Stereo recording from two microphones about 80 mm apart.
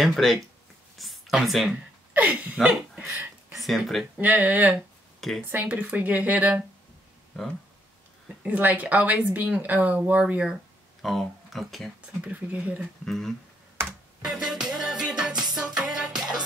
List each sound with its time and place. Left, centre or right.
0.0 s speech: centre
2.1 s speech: centre
3.0 s a sound: right
3.5 s speech: centre
4.2 s speech: centre
8.5 s speech: centre
11.0 s speech: centre
12.2 s speech: centre
13.0 s speech: centre
14.2 s music: centre